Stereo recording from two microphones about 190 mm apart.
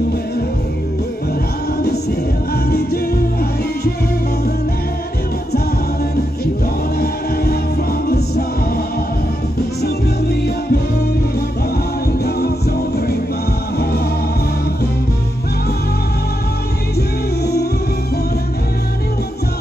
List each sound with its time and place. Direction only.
1.8 s music: 55° left (ahead or behind)
8.1 s music: 55° left (ahead or behind)
12.4 s music: 60° left (ahead or behind)
17.4 s music: 60° left (ahead or behind)